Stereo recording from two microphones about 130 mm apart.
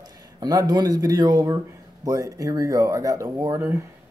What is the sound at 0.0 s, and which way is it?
A man's voice, 30° right (ahead or behind).